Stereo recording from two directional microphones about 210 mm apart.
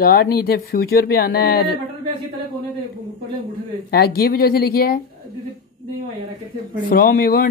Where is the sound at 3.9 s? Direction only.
50° left (ahead or behind).